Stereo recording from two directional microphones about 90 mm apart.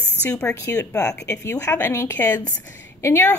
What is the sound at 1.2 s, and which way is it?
A woman's voice, 30° left (ahead or behind).